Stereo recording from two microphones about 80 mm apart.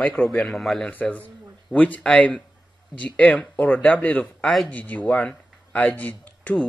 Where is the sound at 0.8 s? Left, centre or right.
Centre.